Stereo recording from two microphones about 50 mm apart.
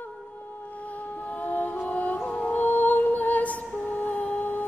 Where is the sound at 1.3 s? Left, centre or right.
Left.